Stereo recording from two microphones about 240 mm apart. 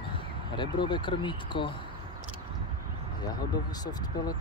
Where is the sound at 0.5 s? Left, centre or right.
Centre.